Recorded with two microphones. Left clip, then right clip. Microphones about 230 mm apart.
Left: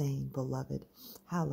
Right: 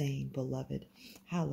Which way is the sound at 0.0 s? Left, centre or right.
Left.